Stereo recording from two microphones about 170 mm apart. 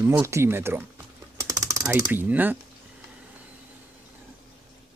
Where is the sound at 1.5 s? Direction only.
20° right (ahead or behind).